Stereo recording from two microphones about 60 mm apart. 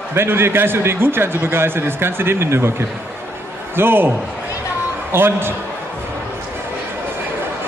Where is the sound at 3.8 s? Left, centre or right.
Right.